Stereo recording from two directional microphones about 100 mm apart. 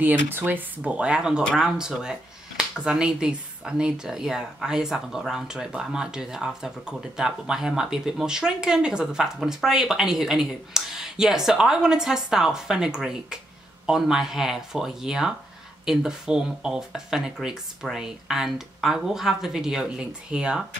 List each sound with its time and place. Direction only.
0.0 s speech: 20° right (ahead or behind)